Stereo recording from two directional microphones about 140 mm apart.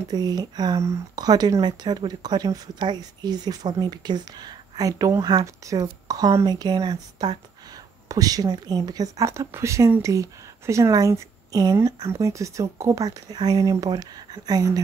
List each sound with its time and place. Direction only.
0.1 s speech: 30° right (ahead or behind)